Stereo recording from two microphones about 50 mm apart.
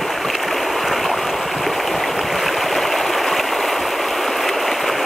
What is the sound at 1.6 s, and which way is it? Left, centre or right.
Stream, centre.